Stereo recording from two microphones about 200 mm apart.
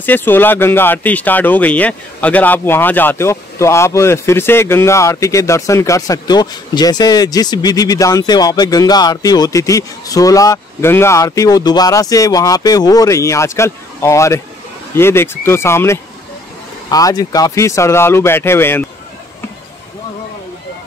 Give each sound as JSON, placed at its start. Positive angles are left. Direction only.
{"t": 0.0, "sound": "speech", "side_deg": 10}